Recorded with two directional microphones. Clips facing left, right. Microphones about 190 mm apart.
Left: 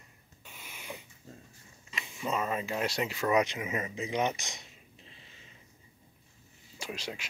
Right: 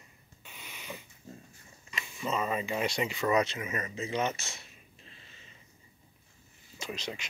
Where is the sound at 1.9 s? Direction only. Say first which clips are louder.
Even; 20° left (ahead or behind).